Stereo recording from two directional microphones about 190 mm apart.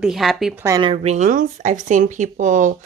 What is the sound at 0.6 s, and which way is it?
Speech, 20° right (ahead or behind).